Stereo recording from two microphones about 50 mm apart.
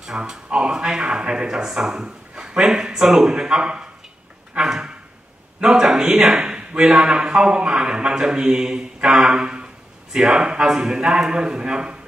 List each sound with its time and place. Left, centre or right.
0.0 s speech: centre
4.6 s a sound: centre
5.7 s a man's voice: centre